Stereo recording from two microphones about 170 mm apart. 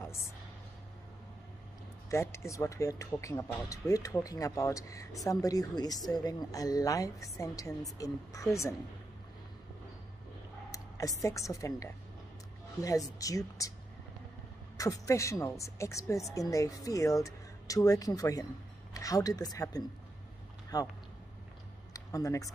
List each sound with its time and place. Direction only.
2.0 s speech: 15° left (ahead or behind)
10.7 s a woman's voice: 20° left (ahead or behind)
14.8 s speech: 20° left (ahead or behind)
21.9 s speech: 20° left (ahead or behind)